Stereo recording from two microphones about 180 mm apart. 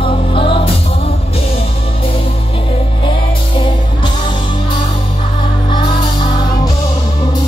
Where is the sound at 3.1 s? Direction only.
30° left (ahead or behind).